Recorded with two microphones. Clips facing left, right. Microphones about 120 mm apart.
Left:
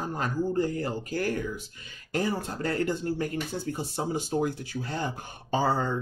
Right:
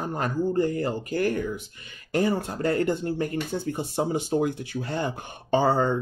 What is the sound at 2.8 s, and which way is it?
Speech, 55° right (ahead or behind).